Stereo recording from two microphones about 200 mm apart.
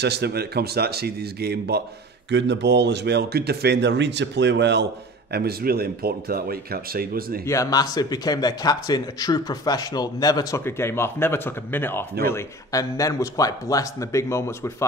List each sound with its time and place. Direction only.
0.0 s speech: 55° right (ahead or behind)
7.4 s a man's voice: 15° left (ahead or behind)